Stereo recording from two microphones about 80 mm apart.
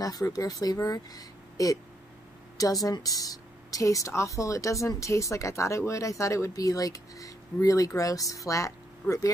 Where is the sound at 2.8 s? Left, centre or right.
Left.